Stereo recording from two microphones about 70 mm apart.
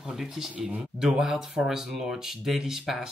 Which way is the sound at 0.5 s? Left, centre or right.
Centre.